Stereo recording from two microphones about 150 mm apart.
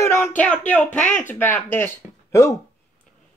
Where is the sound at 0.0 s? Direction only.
15° left (ahead or behind).